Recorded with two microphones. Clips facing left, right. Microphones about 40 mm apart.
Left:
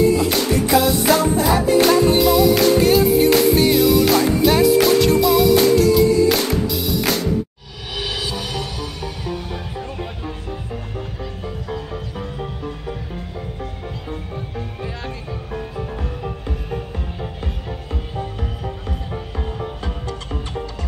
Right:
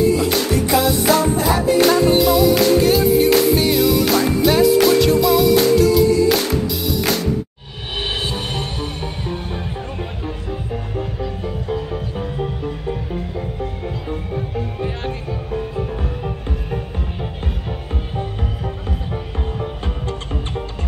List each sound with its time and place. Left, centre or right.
0.0 s music: centre
8.0 s music: right
11.0 s music: centre
16.3 s music: centre